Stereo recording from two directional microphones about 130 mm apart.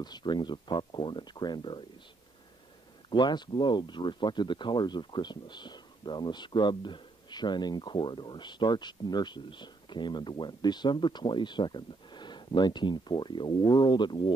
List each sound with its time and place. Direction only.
0.0 s speech: 35° left (ahead or behind)
3.1 s speech: 35° left (ahead or behind)